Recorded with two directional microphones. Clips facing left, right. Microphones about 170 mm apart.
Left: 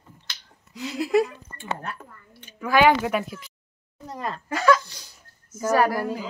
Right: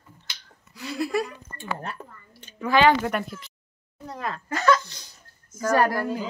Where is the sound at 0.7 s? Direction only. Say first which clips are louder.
Left 5 dB; 20° left (ahead or behind).